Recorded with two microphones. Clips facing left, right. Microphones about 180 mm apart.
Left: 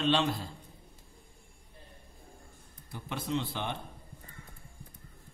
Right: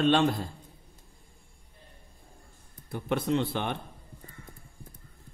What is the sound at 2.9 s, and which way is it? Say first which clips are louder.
Speech: right 7 dB; 55° right (ahead or behind).